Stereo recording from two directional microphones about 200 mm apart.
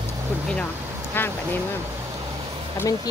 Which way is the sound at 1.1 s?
10° left (ahead or behind).